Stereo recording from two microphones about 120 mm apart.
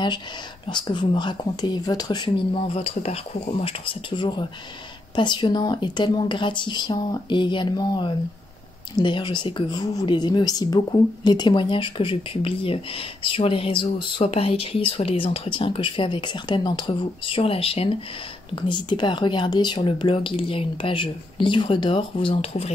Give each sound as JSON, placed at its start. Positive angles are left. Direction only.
{"t": 0.7, "sound": "a woman's voice", "side_deg": 40}
{"t": 18.5, "sound": "a woman's voice", "side_deg": 40}